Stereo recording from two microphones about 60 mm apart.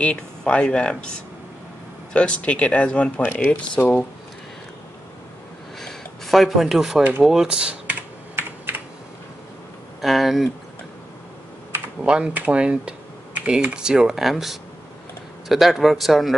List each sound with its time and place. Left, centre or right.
0.0 s speech: centre
3.2 s speech: left
5.8 s a sound: centre
7.0 s speech: right
7.2 s speech: centre
8.4 s computer keyboard: right
10.0 s speech: centre
12.0 s speech: centre